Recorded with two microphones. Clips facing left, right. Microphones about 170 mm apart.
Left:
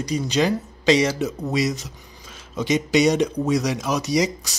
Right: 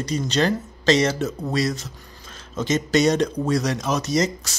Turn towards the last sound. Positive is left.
turn(degrees=15)  # may be behind; listen again after turning